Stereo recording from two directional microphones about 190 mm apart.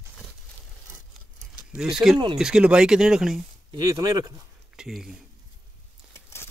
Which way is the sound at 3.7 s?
20° right (ahead or behind).